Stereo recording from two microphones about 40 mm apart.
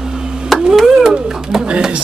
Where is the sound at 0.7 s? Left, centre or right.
Centre.